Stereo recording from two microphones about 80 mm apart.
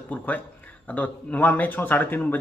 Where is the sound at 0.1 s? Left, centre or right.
Left.